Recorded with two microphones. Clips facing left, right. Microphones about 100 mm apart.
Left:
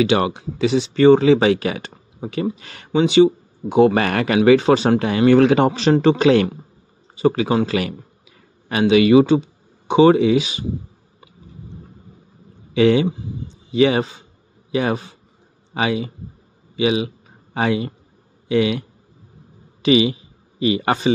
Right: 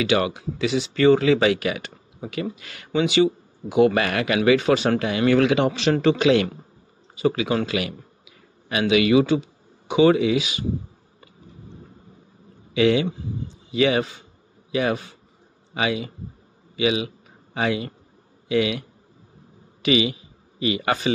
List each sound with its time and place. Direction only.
0.0 s speech: 25° left (ahead or behind)
12.7 s a man's voice: 35° left (ahead or behind)